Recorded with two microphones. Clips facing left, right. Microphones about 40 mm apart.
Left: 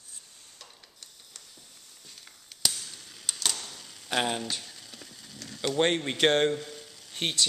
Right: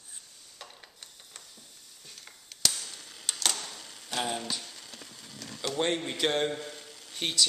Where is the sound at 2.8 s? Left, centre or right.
Centre.